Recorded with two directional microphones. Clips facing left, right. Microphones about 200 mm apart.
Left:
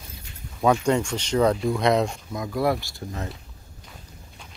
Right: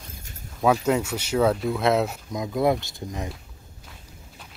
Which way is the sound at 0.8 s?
5° right (ahead or behind).